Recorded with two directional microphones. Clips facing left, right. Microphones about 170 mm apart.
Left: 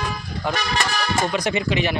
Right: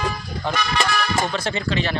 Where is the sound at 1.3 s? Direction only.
15° left (ahead or behind).